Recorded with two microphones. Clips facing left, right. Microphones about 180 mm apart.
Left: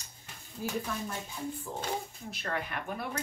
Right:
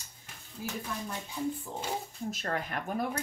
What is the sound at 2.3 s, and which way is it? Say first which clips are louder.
Speech: even; 45° right (ahead or behind).